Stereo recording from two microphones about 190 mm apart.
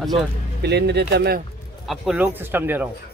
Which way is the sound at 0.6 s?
60° right (ahead or behind).